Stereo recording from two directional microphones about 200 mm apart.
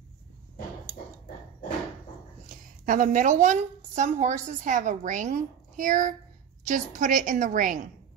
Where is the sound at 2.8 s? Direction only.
40° right (ahead or behind).